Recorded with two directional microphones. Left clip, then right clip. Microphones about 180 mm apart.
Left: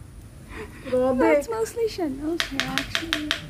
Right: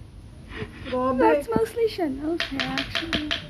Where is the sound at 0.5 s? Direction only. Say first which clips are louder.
Left 4 dB; 10° left (ahead or behind).